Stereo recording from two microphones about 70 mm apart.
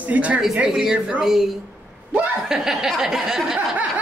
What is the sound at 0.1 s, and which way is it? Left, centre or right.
Speech, right.